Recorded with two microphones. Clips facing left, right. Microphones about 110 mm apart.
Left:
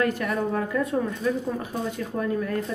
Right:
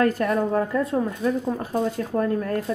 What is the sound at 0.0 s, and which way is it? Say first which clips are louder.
Speech: right 4 dB; 35° right (ahead or behind).